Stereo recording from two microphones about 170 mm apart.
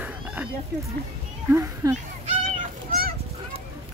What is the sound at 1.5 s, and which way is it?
Speech, 15° right (ahead or behind).